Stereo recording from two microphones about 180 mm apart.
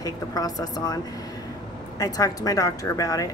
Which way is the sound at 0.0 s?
20° left (ahead or behind).